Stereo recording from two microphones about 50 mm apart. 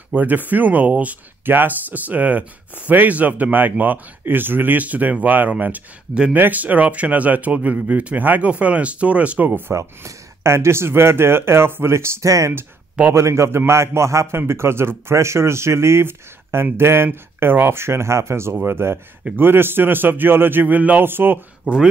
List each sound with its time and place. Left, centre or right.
0.1 s speech: right
1.4 s speech: right
9.7 s a man's voice: right
21.7 s speech: right